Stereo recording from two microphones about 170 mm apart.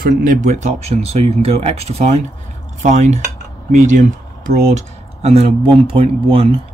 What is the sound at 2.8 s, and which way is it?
Cutlery, 45° right (ahead or behind).